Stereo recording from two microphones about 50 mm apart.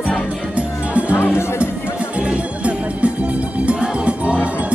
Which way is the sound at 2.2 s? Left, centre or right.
Right.